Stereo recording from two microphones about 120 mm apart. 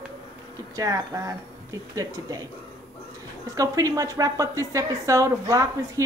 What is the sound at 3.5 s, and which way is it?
A woman's voice, 30° right (ahead or behind).